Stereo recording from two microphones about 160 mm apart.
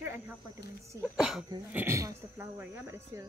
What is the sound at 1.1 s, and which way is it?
Speech, 5° right (ahead or behind).